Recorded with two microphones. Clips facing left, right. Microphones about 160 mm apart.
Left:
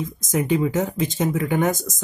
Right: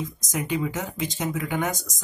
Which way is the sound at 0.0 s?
50° left (ahead or behind).